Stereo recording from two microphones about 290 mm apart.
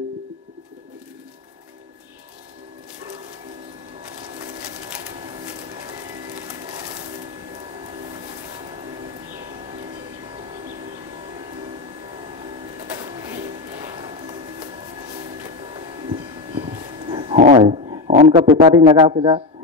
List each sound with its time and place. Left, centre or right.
6.3 s music: centre
13.0 s printer: centre
15.4 s a sound: centre